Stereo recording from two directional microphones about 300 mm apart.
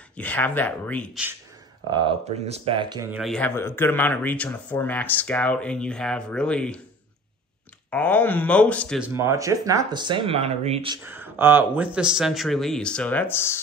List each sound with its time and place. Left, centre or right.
0.2 s speech: centre
1.9 s speech: centre
3.2 s speech: centre
7.9 s speech: centre
11.1 s speech: centre